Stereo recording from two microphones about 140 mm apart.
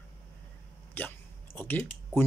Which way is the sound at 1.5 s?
15° left (ahead or behind).